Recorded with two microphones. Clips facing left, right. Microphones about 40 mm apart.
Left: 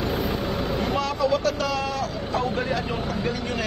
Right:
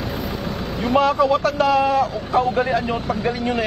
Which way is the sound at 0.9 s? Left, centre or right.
Right.